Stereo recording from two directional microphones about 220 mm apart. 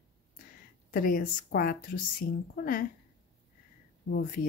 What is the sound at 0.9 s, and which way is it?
Speech, 40° left (ahead or behind).